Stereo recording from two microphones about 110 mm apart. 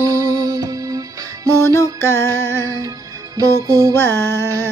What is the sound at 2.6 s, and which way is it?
Music, 30° right (ahead or behind).